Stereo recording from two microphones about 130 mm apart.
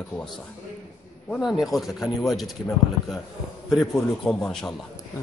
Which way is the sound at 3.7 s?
5° left (ahead or behind).